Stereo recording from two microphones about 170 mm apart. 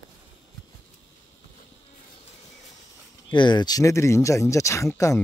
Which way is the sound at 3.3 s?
25° left (ahead or behind).